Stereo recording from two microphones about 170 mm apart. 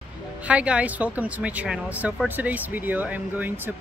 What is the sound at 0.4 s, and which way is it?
Speech, 10° right (ahead or behind).